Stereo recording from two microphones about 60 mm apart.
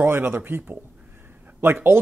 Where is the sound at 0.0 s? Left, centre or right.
Right.